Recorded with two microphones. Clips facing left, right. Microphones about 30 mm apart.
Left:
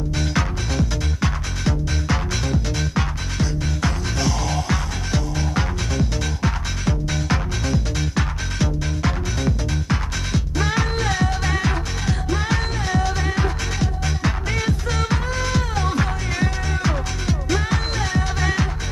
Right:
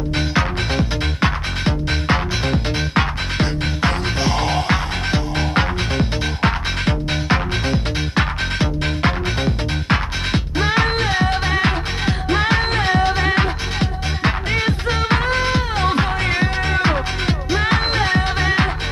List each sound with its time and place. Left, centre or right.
0.2 s music: right